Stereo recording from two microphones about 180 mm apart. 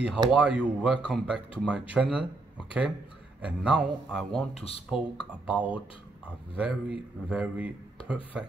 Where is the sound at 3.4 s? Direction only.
5° right (ahead or behind).